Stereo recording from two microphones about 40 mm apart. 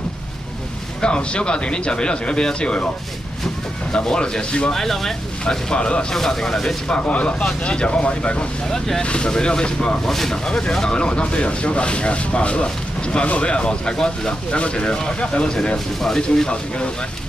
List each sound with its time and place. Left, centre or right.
1.0 s speech: left
3.9 s speech: left
4.7 s speech: centre
5.4 s speech: left
6.1 s speech: centre
7.0 s speech: left
8.6 s speech: centre
9.0 s speech: left
10.0 s speech: centre
16.4 s speech: left